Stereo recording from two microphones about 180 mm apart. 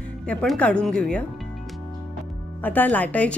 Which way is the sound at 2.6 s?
10° left (ahead or behind).